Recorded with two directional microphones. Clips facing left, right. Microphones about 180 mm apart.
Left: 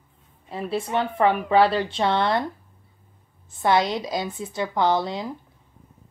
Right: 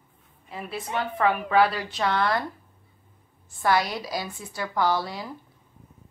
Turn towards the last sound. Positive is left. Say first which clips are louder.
# left 3 dB
turn(degrees=20)  # may be behind; listen again after turning